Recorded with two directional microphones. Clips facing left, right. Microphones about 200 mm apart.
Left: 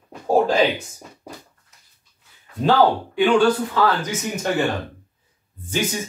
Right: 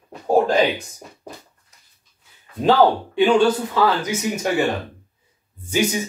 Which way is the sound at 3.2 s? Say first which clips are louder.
Right 1 dB; 20° right (ahead or behind).